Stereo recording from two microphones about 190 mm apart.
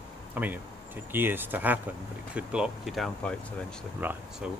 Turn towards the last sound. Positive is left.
turn(degrees=-10)  # may be behind; listen again after turning